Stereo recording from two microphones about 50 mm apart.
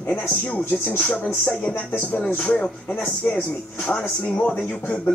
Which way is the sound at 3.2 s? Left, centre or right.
Centre.